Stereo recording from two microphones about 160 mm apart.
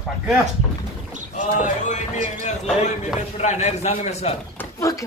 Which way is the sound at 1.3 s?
50° left (ahead or behind).